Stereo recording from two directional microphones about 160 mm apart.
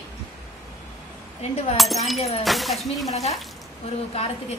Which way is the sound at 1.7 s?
Centre (ahead or behind).